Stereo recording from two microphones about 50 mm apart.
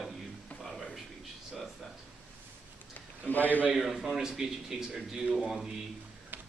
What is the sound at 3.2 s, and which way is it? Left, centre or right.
Speech, left.